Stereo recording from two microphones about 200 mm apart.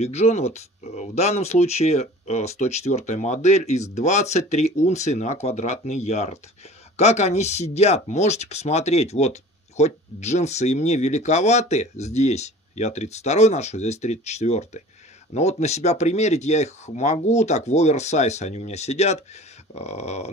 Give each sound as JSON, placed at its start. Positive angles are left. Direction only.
{"t": 0.0, "sound": "speech", "side_deg": 35}